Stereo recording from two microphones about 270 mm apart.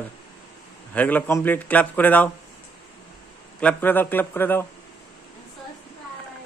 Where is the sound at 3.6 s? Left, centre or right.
Centre.